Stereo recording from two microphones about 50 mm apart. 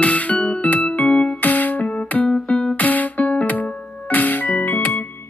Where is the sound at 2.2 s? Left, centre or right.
Centre.